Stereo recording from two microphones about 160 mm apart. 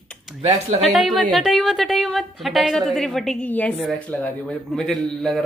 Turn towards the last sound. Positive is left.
turn(degrees=0)  # may be behind; listen again after turning